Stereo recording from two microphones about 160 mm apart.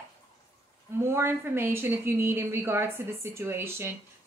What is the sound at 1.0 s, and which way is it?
A woman's voice, 15° right (ahead or behind).